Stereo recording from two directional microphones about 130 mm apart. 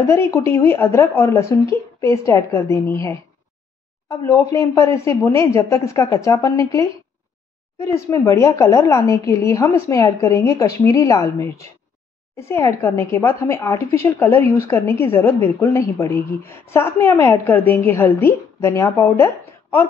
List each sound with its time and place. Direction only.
0.0 s a woman's voice: 20° left (ahead or behind)